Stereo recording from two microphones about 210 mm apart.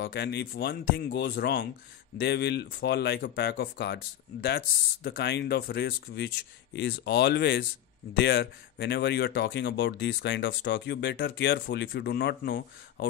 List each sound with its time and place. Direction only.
0.0 s speech: 55° left (ahead or behind)